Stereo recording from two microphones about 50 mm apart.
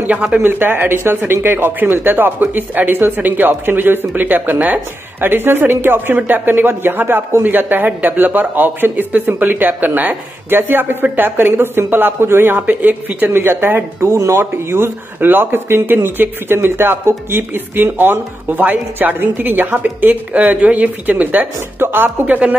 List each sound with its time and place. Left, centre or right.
0.4 s speech: right
5.2 s speech: right
14.0 s speech: right
14.4 s speech: right
21.8 s speech: right
22.2 s speech: right